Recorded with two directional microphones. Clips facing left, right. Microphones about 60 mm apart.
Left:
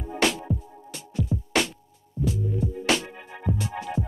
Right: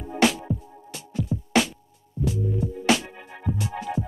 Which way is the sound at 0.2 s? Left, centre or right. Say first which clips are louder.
Right 3 dB; centre.